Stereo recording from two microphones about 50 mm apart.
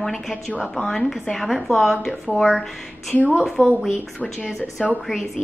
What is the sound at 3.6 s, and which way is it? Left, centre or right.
Speech, left.